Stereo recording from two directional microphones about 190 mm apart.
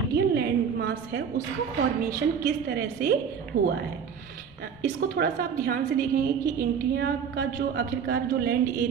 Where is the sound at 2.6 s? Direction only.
55° right (ahead or behind).